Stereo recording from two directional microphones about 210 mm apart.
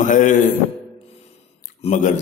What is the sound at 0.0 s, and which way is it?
Speech, 35° left (ahead or behind).